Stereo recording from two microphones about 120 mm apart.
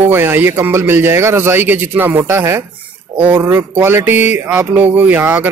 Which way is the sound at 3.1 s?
15° right (ahead or behind).